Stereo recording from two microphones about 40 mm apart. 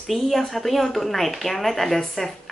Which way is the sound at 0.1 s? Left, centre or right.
Centre.